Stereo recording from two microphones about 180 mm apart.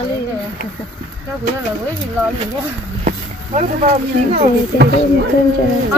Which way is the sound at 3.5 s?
35° right (ahead or behind).